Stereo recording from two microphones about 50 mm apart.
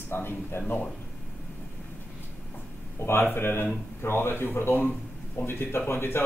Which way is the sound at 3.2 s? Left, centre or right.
Left.